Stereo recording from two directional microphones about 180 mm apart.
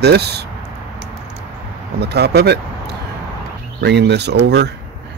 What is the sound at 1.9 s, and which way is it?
Speech, 65° right (ahead or behind).